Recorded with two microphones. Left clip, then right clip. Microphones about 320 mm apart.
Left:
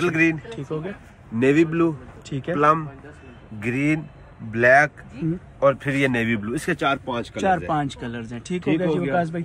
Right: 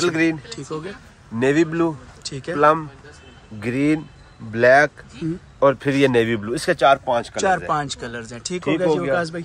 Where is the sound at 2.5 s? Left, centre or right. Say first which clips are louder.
Right 2 dB; right.